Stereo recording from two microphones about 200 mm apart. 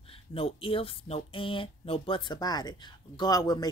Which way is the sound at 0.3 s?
30° left (ahead or behind).